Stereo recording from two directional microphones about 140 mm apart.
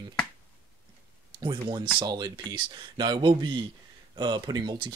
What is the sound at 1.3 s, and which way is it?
Speech, 35° right (ahead or behind).